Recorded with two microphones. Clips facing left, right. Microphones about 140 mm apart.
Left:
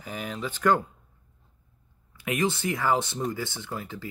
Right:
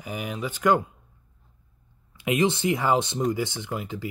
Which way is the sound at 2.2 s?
20° right (ahead or behind).